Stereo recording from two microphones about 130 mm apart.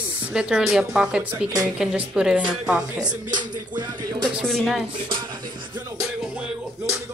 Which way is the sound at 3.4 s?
35° right (ahead or behind).